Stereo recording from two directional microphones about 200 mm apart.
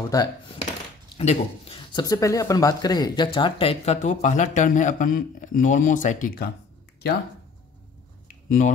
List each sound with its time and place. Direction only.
0.1 s speech: 20° left (ahead or behind)
1.1 s speech: 30° left (ahead or behind); by 6.5 s 45° left (ahead or behind)
8.3 s a sound: 40° left (ahead or behind)